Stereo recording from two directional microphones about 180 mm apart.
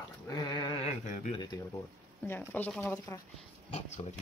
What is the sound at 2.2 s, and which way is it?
Speech, 10° left (ahead or behind).